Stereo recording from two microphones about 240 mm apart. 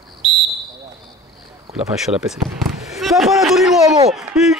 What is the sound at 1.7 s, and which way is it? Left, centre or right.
Speech, centre.